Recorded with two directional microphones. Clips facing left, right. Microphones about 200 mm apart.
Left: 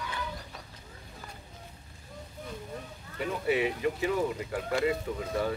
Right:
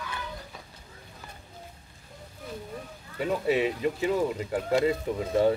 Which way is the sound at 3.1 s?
25° right (ahead or behind).